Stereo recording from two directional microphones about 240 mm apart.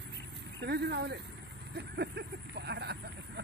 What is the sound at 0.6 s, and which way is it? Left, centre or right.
Speech, right.